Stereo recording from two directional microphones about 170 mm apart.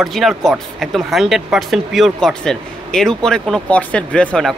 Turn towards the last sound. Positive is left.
turn(degrees=5)  # may be behind; listen again after turning